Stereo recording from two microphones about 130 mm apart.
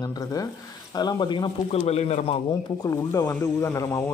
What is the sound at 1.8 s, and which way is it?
Speech, 55° left (ahead or behind).